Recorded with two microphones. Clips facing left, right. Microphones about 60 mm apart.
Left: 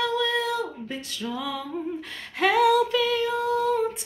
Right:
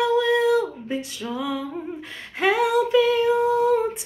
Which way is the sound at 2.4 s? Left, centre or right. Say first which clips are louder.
Even; centre.